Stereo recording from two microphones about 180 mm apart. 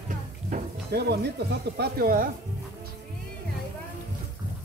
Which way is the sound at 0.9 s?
65° right (ahead or behind).